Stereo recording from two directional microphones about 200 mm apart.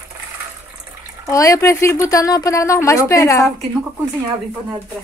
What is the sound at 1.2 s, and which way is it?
A woman's voice, 15° left (ahead or behind).